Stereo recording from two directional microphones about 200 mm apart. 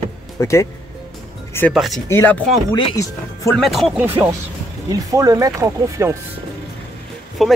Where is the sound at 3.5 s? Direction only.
Centre (ahead or behind).